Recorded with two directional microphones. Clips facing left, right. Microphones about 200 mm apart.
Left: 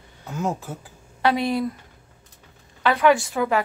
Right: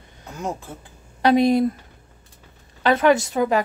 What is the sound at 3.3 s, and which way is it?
Speech, 30° right (ahead or behind).